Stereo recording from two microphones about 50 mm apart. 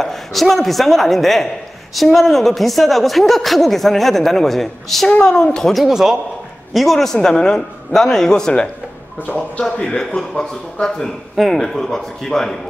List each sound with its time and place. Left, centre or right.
0.0 s a man's voice: centre
5.9 s a man's voice: centre
9.2 s speech: left
9.8 s a man's voice: centre
11.3 s a man's voice: centre